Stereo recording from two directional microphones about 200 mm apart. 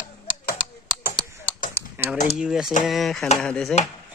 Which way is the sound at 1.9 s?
10° right (ahead or behind).